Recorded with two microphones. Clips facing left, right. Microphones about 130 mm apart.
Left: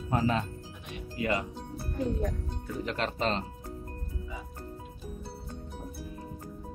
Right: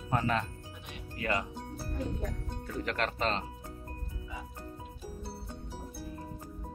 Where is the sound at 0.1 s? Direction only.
20° left (ahead or behind).